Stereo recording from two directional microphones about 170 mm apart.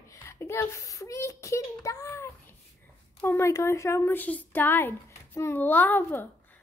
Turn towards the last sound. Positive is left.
turn(degrees=10)  # may be behind; listen again after turning